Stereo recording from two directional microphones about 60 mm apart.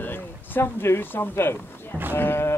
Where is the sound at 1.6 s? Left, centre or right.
Left.